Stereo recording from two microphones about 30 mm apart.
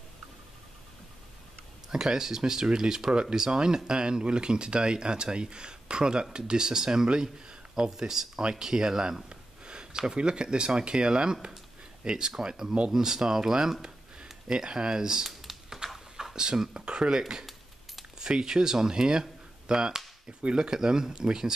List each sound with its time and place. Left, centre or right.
1.9 s speech: centre
9.3 s a sound: right
10.8 s speech: right
15.2 s typing: centre
16.7 s speech: right
18.2 s speech: right